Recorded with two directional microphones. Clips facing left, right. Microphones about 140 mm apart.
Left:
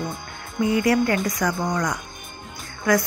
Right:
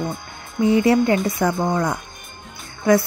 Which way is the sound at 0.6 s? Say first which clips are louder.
Right 4 dB; 25° right (ahead or behind).